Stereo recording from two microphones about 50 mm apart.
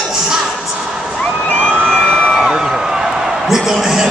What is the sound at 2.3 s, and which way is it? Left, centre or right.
Music, centre.